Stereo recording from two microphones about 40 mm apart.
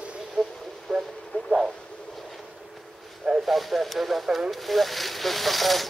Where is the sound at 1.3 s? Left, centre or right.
Left.